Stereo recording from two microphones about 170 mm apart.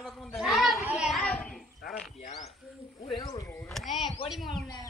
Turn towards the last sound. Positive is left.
turn(degrees=0)  # may be behind; listen again after turning